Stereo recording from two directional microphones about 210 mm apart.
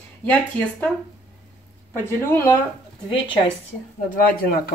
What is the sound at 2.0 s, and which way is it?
Speech, 10° left (ahead or behind).